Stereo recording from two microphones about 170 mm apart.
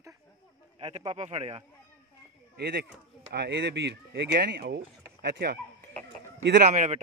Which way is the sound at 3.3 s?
85° right.